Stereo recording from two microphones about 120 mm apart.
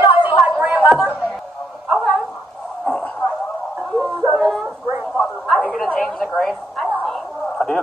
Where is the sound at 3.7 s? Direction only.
10° right (ahead or behind).